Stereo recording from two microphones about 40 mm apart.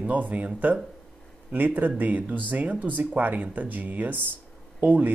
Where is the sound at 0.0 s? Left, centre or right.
Right.